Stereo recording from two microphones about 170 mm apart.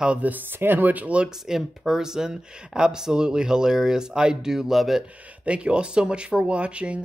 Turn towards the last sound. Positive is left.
turn(degrees=-5)  # may be behind; listen again after turning